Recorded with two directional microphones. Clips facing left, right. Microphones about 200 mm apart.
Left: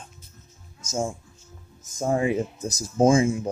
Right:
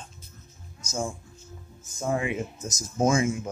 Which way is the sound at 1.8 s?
40° left (ahead or behind).